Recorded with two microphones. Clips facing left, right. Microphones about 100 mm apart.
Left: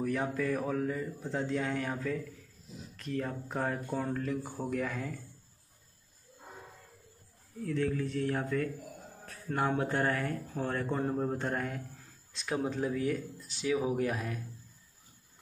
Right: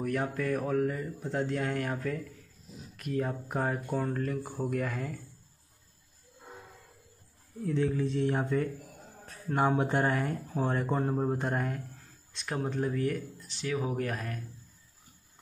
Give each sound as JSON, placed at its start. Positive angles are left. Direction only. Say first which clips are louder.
{"t": 0.0, "sound": "speech", "louder": "right 1 dB", "side_deg": 0}
{"t": 3.0, "sound": "speech", "louder": "right 3 dB", "side_deg": -10}
{"t": 7.6, "sound": "speech", "louder": "right 3 dB", "side_deg": -20}